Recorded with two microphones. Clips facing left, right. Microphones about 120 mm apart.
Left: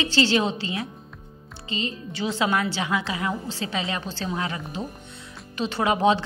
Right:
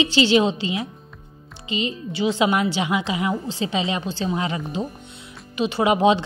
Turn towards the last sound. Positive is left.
turn(degrees=-15)  # may be behind; listen again after turning